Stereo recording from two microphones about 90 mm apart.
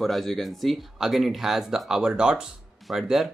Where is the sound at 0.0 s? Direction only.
Centre (ahead or behind).